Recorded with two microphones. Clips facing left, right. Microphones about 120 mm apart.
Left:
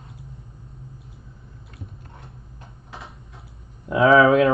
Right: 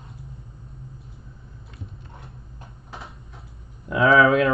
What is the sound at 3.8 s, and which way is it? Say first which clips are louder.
Speech: left 2 dB; 30° left (ahead or behind).